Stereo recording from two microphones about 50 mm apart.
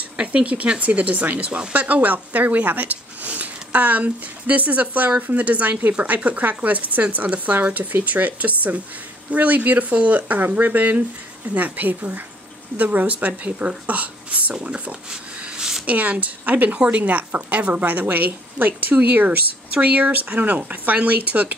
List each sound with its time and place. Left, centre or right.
0.2 s a woman's voice: right
15.5 s a sound: centre
15.9 s a woman's voice: right